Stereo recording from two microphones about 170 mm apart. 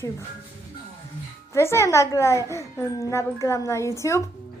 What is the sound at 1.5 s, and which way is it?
A woman's voice, 15° left (ahead or behind).